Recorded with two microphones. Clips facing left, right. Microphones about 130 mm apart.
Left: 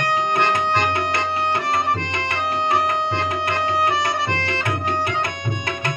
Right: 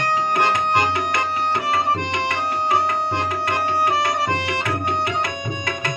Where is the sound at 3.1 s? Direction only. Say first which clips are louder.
Even; 15° right (ahead or behind).